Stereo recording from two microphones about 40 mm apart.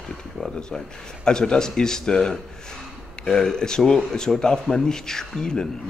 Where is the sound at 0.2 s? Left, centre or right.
Centre.